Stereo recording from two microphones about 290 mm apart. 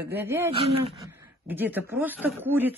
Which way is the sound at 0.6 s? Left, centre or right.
Right.